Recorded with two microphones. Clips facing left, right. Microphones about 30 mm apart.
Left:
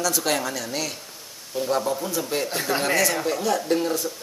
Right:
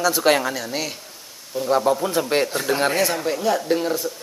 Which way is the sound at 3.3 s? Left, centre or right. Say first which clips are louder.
Right 2 dB; centre.